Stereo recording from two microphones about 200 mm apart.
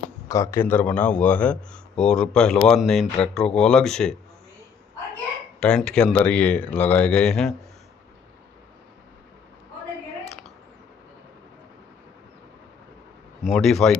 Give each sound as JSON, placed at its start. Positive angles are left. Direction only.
{"t": 0.3, "sound": "a man's voice", "side_deg": 15}
{"t": 5.6, "sound": "a man's voice", "side_deg": 5}
{"t": 13.4, "sound": "speech", "side_deg": 0}